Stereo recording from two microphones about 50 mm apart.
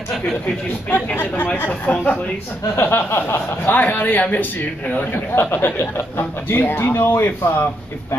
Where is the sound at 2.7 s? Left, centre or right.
Left.